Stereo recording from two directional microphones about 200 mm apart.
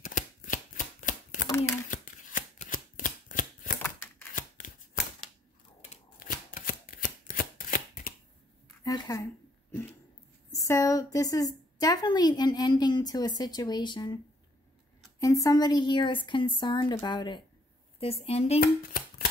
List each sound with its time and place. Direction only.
0.0 s shuffling cards: 40° left (ahead or behind)
8.8 s a sound: 15° left (ahead or behind)
10.5 s a woman's voice: 15° left (ahead or behind)
18.6 s speech: 45° left (ahead or behind)